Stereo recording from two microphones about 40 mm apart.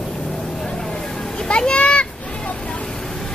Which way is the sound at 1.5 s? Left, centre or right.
Left.